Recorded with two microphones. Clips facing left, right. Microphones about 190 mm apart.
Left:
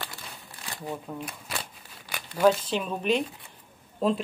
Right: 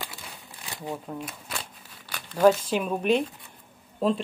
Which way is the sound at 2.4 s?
10° right (ahead or behind).